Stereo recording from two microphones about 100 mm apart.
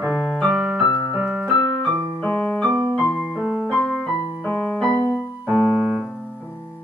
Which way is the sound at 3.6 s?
10° left (ahead or behind).